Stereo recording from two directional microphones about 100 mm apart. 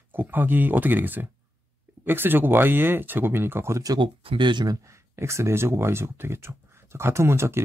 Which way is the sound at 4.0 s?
55° right (ahead or behind).